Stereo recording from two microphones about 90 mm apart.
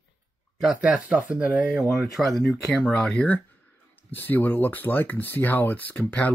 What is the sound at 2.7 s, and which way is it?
Speech, 10° left (ahead or behind).